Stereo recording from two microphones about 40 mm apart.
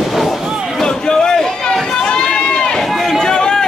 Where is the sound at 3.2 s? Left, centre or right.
Centre.